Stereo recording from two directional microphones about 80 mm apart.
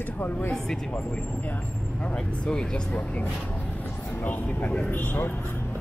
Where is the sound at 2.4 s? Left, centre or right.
Centre.